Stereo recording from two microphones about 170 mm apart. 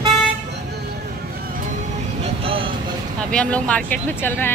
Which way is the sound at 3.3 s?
5° left (ahead or behind).